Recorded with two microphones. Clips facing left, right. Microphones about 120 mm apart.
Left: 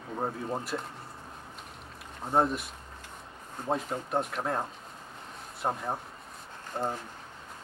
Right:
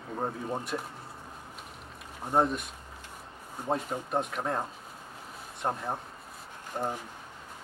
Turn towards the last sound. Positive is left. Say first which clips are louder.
# even
turn(degrees=-10)  # may be behind; listen again after turning